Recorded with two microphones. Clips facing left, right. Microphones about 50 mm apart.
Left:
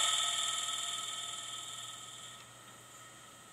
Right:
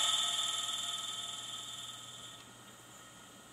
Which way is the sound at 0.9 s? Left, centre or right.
Left.